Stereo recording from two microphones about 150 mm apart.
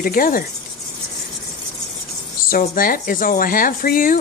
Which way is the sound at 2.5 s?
70° left (ahead or behind).